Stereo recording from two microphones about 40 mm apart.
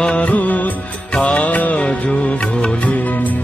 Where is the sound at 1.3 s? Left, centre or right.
Left.